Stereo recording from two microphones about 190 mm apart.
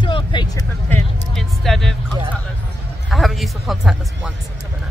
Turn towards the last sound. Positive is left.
turn(degrees=0)  # may be behind; listen again after turning